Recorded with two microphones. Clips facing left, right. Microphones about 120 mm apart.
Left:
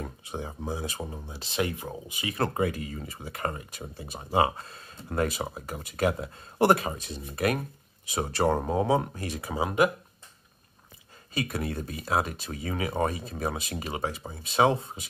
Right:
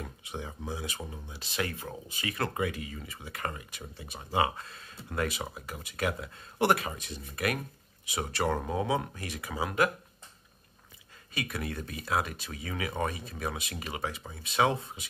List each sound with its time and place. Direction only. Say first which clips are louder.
0.0 s speech: left 4 dB; 35° left (ahead or behind); by 2.3 s 15° left (ahead or behind)
2.3 s speech: left 5 dB; 40° left (ahead or behind)
11.3 s speech: left 5 dB; 35° left (ahead or behind)